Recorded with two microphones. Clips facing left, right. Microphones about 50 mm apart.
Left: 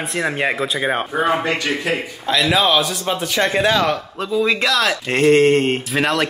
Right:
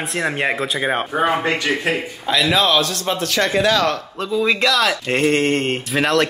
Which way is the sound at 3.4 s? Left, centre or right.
Left.